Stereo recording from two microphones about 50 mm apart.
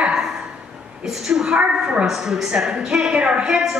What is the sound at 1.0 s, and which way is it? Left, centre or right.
Speech, centre.